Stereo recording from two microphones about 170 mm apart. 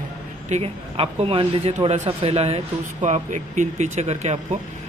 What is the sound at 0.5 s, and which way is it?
Speech, 35° right (ahead or behind).